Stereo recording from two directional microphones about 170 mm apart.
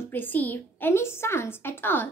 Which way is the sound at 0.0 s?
10° left (ahead or behind).